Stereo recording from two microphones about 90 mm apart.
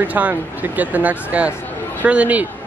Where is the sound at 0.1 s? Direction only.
15° right (ahead or behind).